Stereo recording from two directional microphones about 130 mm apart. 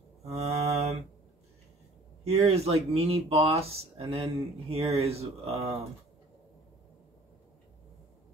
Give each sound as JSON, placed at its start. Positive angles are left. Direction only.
{"t": 0.2, "sound": "mantra", "side_deg": -55}
{"t": 2.2, "sound": "speech", "side_deg": -55}